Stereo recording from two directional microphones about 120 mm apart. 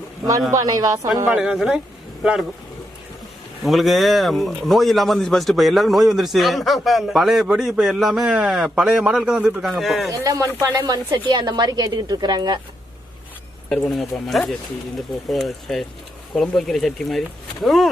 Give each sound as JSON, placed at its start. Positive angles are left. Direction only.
{"t": 0.5, "sound": "a woman's voice", "side_deg": -30}
{"t": 1.3, "sound": "speech", "side_deg": -5}
{"t": 3.6, "sound": "speech", "side_deg": 0}
{"t": 10.2, "sound": "a woman's voice", "side_deg": -30}
{"t": 13.7, "sound": "speech", "side_deg": 0}